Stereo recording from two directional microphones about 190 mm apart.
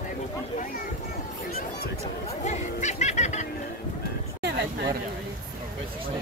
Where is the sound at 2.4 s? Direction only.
35° left (ahead or behind).